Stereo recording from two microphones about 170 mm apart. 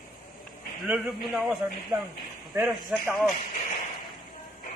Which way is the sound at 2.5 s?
15° right (ahead or behind).